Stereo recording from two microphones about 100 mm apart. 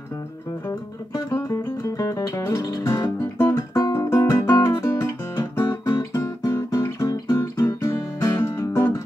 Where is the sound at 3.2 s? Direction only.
25° left (ahead or behind).